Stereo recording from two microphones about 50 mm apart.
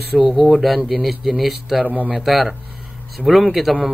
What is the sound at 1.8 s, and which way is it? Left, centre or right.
Speech, right.